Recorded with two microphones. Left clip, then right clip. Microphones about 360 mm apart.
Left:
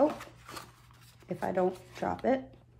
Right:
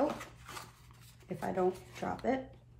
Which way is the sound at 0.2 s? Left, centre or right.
Centre.